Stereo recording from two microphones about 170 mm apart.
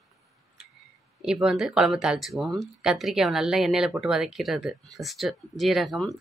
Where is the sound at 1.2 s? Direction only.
5° right (ahead or behind).